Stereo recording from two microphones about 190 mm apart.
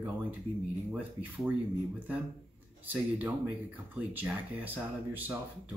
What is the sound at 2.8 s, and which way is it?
Speech, 10° right (ahead or behind).